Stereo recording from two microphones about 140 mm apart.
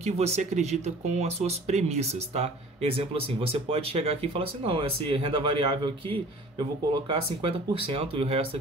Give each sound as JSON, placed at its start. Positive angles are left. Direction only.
{"t": 0.0, "sound": "speech", "side_deg": -50}